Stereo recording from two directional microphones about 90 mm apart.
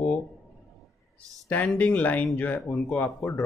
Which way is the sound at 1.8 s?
15° left (ahead or behind).